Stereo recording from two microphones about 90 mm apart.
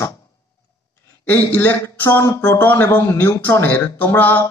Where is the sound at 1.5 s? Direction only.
20° left (ahead or behind).